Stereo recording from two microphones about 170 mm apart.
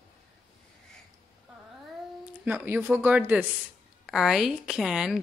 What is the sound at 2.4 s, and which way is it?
Speech, 10° right (ahead or behind).